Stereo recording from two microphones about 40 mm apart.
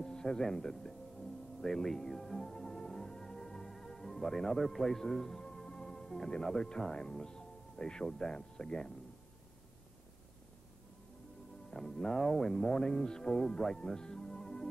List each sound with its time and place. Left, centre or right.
0.0 s speech: centre
11.7 s speech: centre